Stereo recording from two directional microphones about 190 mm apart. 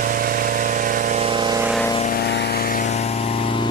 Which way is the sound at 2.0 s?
50° left (ahead or behind).